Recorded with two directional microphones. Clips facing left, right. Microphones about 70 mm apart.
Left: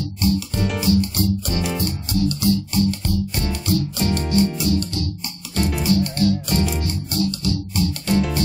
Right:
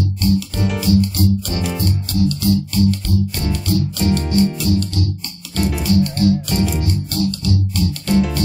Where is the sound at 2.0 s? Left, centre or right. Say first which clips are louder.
Right 2 dB; centre.